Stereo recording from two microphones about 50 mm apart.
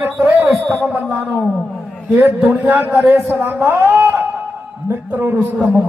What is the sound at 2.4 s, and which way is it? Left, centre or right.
Speech, right.